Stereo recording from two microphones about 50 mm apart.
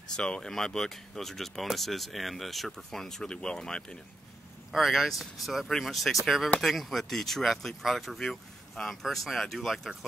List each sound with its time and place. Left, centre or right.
0.1 s speech: centre
4.7 s speech: centre